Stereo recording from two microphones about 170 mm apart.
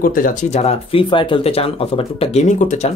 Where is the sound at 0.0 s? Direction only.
55° left (ahead or behind).